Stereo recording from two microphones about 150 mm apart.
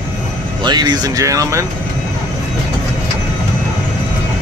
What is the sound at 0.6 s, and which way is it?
Speech, 30° right (ahead or behind).